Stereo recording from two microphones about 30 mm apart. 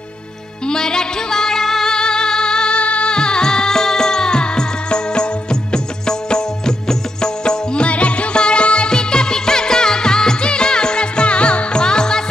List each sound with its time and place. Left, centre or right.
0.7 s music: left
2.0 s music: left
2.8 s music: left
3.1 s music: left
7.8 s music: left
8.9 s music: left
11.8 s music: left